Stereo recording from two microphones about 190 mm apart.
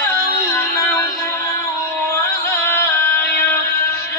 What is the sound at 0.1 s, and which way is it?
Music, 15° left (ahead or behind).